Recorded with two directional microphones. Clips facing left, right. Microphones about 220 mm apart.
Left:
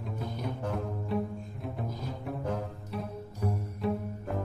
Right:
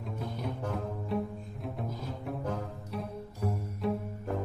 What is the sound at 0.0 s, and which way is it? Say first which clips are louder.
Music: left 1 dB; centre (ahead or behind).